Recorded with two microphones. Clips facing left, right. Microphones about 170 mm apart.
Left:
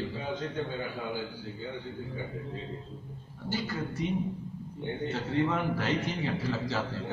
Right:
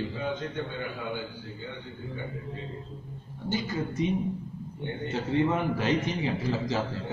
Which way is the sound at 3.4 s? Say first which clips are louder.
Right 3 dB; 20° right (ahead or behind).